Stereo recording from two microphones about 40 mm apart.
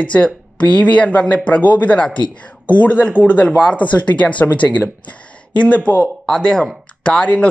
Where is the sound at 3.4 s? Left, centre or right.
Left.